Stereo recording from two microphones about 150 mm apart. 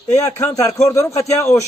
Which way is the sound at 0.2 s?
20° left (ahead or behind).